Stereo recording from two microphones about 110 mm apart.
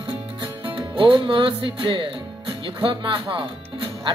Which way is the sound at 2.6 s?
50° right (ahead or behind).